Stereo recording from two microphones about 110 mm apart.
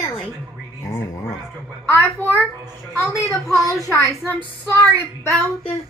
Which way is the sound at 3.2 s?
30° left (ahead or behind).